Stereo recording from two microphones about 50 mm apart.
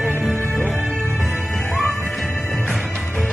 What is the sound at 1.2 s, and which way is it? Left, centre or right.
Music, centre.